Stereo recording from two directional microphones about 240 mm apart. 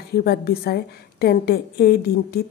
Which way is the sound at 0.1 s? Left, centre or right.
Left.